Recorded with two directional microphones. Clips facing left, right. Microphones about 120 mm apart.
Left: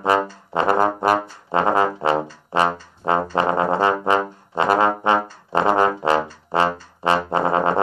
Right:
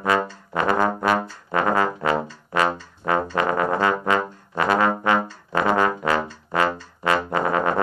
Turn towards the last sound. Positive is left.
turn(degrees=25)  # may be behind; listen again after turning